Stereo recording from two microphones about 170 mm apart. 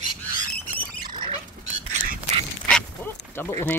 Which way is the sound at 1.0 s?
25° right (ahead or behind).